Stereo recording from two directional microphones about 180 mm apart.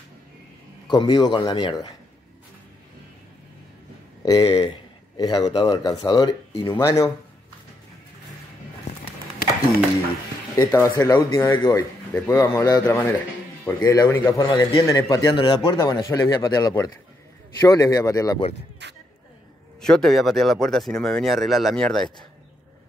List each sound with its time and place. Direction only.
0.8 s a man's voice: 25° left (ahead or behind)
4.2 s speech: 20° left (ahead or behind)
4.6 s a sound: 25° left (ahead or behind)
5.5 s a man's voice: 25° left (ahead or behind)
10.5 s a man's voice: 15° left (ahead or behind)
18.8 s a sound: 70° right (ahead or behind)
19.8 s speech: 5° left (ahead or behind)